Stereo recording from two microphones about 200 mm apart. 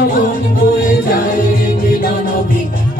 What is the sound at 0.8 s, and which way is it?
Music, 45° left (ahead or behind).